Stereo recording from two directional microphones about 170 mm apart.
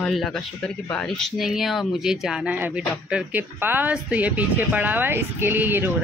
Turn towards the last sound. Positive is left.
turn(degrees=-10)  # may be behind; listen again after turning